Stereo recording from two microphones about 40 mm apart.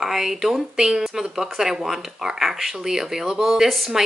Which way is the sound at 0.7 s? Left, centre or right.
Centre.